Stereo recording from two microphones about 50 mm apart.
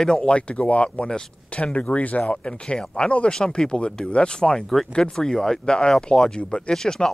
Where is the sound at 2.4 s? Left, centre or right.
Centre.